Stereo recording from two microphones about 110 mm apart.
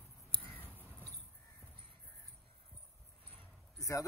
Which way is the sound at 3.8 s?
30° left (ahead or behind).